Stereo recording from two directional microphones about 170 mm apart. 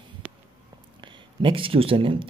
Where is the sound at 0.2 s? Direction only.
10° right (ahead or behind).